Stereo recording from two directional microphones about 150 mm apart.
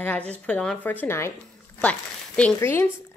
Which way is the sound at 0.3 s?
5° left (ahead or behind).